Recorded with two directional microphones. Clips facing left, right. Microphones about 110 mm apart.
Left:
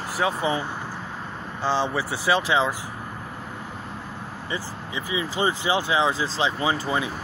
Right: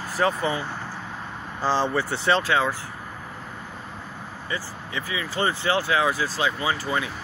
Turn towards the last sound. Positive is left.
turn(degrees=20)  # may be behind; listen again after turning